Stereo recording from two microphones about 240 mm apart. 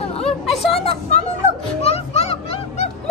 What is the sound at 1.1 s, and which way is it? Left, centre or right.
Music, left.